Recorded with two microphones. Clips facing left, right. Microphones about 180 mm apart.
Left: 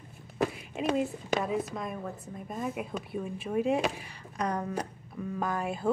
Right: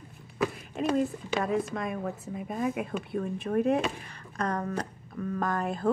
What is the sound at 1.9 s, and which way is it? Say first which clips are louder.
Speech: right 4 dB; 5° right (ahead or behind).